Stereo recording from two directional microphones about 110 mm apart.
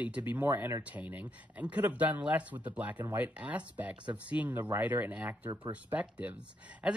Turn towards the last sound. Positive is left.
turn(degrees=-10)  # may be behind; listen again after turning